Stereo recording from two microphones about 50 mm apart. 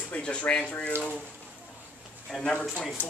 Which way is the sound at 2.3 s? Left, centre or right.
Centre.